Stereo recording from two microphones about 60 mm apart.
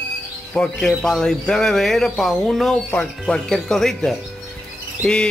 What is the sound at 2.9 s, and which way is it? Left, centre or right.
Speech, centre.